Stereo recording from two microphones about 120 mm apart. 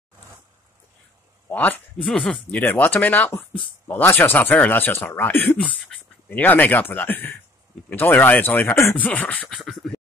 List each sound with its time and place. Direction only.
1.5 s speech: 15° left (ahead or behind)
2.0 s speech: 5° left (ahead or behind)
9.5 s scratching: centre (ahead or behind)